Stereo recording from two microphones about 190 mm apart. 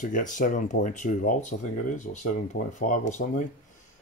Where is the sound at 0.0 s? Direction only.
40° left (ahead or behind).